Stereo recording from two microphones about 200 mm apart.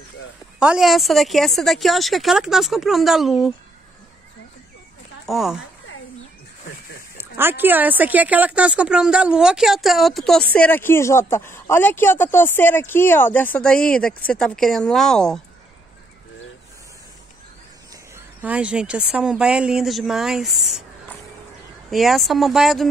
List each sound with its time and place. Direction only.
0.6 s speech: 5° right (ahead or behind)
5.2 s speech: centre (ahead or behind)
7.2 s speech: 10° right (ahead or behind)
18.1 s speech: 5° right (ahead or behind)
21.9 s speech: centre (ahead or behind)